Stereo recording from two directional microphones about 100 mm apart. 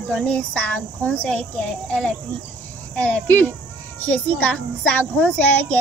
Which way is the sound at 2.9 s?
10° left (ahead or behind).